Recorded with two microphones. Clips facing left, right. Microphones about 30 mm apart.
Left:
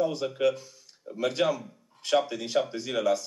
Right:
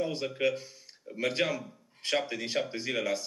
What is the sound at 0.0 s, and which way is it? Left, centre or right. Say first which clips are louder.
Speech: left 4 dB; right.